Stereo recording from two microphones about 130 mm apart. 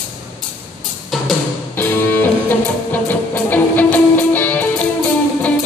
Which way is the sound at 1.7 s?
15° left (ahead or behind).